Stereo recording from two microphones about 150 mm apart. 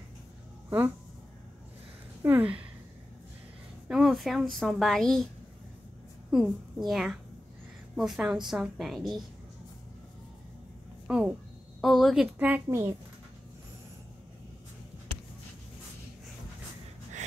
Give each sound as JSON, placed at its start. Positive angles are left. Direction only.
{"t": 0.7, "sound": "speech", "side_deg": -15}
{"t": 2.2, "sound": "speech", "side_deg": -10}
{"t": 3.9, "sound": "a woman's voice", "side_deg": 0}
{"t": 6.9, "sound": "a woman's voice", "side_deg": 0}
{"t": 11.1, "sound": "a woman's voice", "side_deg": -5}
{"t": 12.6, "sound": "a child's voice", "side_deg": -20}